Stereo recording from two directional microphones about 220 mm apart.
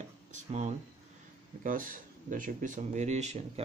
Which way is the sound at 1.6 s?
40° right (ahead or behind).